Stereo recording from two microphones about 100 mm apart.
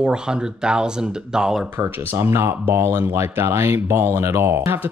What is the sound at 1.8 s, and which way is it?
Speech, 25° right (ahead or behind).